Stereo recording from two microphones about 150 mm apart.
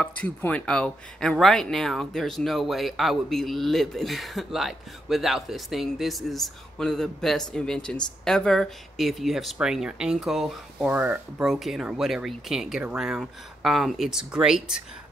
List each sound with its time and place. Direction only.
0.0 s speech: 10° left (ahead or behind)